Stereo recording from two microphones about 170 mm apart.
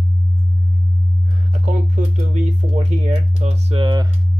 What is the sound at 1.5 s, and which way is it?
Speech, 45° right (ahead or behind).